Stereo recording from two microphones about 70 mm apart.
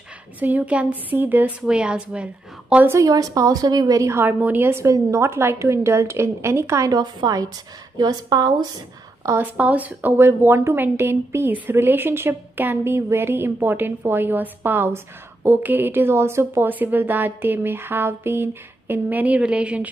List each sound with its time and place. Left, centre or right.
0.4 s speech: right
1.7 s a woman's voice: centre
3.1 s a woman's voice: right
4.2 s speech: right
4.8 s a woman's voice: right
7.0 s a woman's voice: right
9.6 s a woman's voice: right